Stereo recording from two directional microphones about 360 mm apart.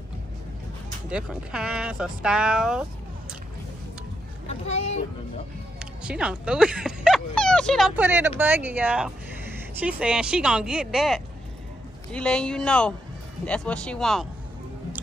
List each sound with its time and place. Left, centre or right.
1.1 s speech: centre
4.5 s speech: centre
5.8 s speech: centre